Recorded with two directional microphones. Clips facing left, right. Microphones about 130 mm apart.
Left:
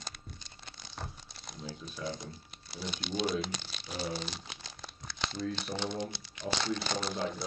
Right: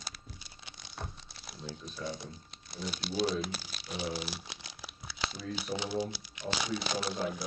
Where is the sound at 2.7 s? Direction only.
Centre (ahead or behind).